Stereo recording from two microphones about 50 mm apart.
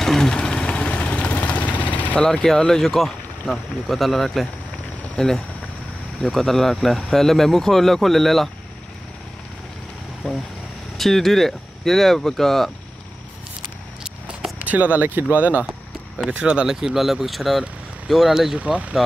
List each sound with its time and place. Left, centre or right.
0.0 s vehicle: centre; by 2.1 s left
2.1 s speech: centre
10.2 s speech: centre
14.6 s speech: right
16.6 s speech: centre
18.6 s speech: right